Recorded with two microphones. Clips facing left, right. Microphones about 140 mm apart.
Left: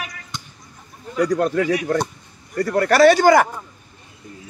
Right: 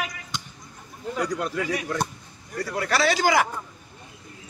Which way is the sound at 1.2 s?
45° left (ahead or behind).